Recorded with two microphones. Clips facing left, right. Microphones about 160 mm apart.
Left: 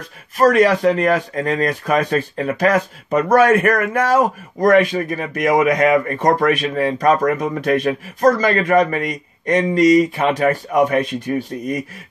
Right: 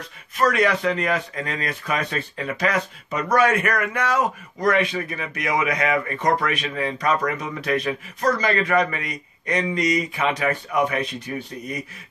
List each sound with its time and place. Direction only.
0.4 s speech: 45° left (ahead or behind)